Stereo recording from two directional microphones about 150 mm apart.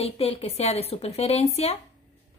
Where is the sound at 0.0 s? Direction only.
40° left (ahead or behind).